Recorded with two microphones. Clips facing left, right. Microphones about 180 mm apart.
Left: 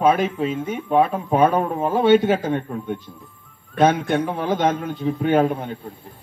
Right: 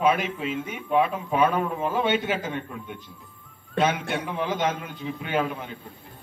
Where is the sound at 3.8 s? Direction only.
45° left (ahead or behind).